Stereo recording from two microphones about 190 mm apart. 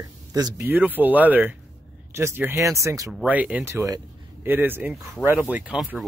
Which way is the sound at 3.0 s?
5° right (ahead or behind).